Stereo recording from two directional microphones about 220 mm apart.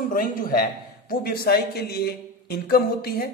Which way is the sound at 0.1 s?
40° left (ahead or behind).